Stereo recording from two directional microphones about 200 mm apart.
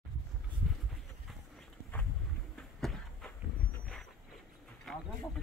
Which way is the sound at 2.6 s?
Centre (ahead or behind).